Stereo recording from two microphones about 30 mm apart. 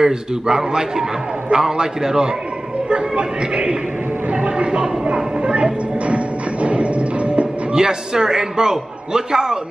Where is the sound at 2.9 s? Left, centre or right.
Right.